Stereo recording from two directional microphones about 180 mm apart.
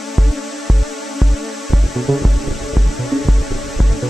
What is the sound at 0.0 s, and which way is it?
Music, centre (ahead or behind).